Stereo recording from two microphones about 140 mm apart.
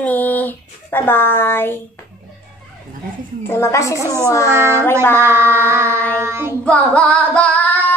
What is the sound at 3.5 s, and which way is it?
Speech, 20° left (ahead or behind).